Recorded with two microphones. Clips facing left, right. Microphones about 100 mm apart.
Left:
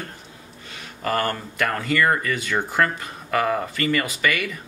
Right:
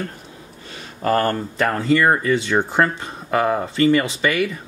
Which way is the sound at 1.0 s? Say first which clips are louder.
Right 5 dB; 35° right (ahead or behind).